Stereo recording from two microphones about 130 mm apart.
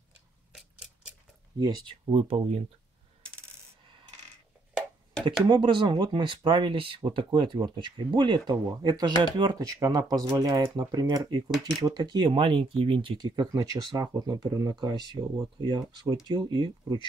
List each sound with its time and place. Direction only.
0.5 s a sound: 5° right (ahead or behind)
1.6 s speech: 35° right (ahead or behind)
5.5 s speech: 35° right (ahead or behind)